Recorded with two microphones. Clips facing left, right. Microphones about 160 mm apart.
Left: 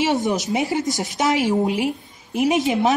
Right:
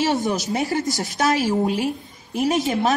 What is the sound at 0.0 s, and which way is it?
A woman's voice, 20° left (ahead or behind).